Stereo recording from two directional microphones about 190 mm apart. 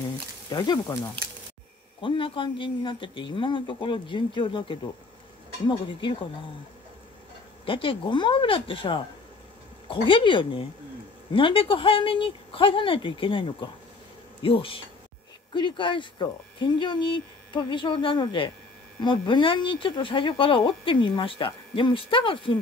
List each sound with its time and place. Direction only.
0.5 s speech: 20° left (ahead or behind)
2.0 s speech: 25° left (ahead or behind)
7.6 s speech: 25° left (ahead or behind)